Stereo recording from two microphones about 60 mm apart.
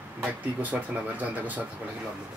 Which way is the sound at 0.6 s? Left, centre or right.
Right.